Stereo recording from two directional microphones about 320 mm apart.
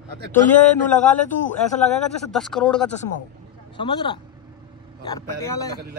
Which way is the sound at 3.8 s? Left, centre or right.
Centre.